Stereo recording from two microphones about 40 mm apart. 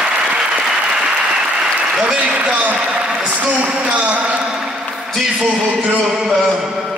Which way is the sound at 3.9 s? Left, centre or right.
Right.